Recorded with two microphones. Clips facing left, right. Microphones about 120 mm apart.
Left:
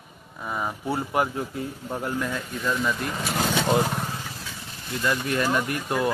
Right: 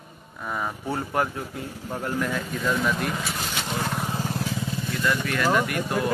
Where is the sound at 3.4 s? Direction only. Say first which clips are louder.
Left 8 dB; 55° left (ahead or behind).